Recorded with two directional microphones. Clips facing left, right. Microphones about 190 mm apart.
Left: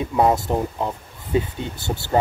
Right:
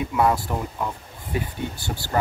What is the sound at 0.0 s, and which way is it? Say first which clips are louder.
Speech: left 3 dB; 30° left (ahead or behind).